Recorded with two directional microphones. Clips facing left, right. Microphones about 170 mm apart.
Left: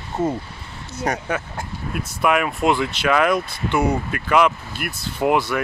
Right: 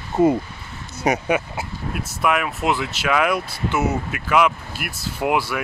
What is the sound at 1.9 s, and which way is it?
Speech, centre (ahead or behind).